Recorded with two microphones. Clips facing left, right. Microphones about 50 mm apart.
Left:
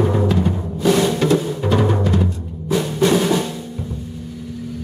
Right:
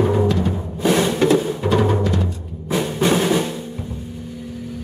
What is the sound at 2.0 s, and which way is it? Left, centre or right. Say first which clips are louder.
Timpani: left 2 dB; centre.